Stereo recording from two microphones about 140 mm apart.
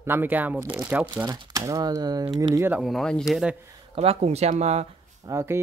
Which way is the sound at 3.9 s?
45° right (ahead or behind).